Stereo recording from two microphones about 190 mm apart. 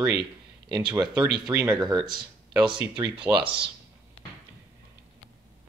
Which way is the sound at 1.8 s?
25° right (ahead or behind).